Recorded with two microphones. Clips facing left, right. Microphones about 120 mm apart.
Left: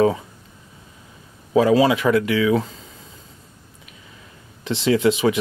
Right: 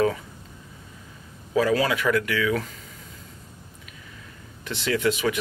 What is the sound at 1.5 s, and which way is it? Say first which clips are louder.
Speech: left 6 dB; 25° left (ahead or behind).